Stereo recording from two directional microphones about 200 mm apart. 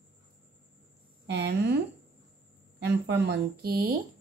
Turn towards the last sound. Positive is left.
turn(degrees=-50)  # may be behind; listen again after turning